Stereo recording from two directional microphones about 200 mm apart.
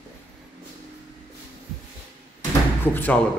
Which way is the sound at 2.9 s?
10° left (ahead or behind).